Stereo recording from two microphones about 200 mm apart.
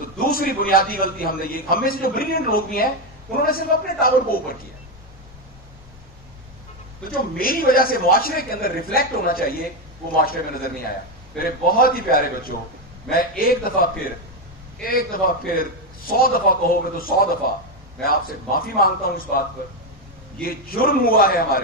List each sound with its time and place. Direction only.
0.2 s a man's voice: 45° left (ahead or behind)
7.1 s a man's voice: 45° left (ahead or behind)